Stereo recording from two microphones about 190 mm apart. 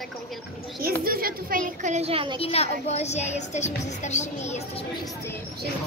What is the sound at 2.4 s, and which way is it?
Speech, 30° left (ahead or behind).